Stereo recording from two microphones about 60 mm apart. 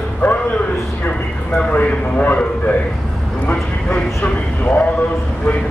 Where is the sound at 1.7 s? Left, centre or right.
Left.